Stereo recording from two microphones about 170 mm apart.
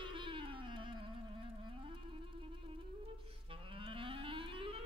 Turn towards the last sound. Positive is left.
turn(degrees=-30)  # may be behind; listen again after turning